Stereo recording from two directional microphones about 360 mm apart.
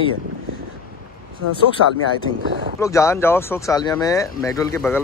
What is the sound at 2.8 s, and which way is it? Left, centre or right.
Speech, centre.